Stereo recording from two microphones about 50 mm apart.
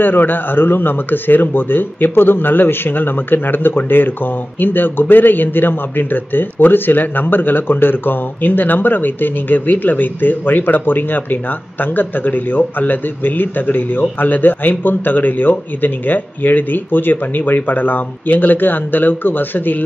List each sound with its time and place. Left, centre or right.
0.0 s a man's voice: left